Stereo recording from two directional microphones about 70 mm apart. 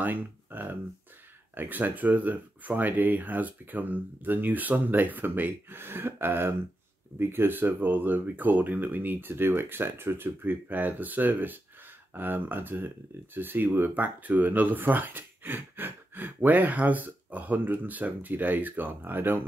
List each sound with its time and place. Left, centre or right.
0.0 s speech: right